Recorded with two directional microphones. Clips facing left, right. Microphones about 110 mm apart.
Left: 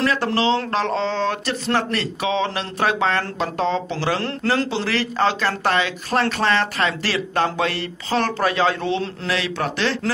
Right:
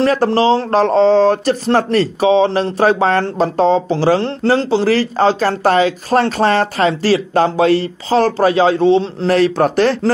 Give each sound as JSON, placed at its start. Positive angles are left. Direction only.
{"t": 0.0, "sound": "speech", "side_deg": -40}
{"t": 9.3, "sound": "speech", "side_deg": -45}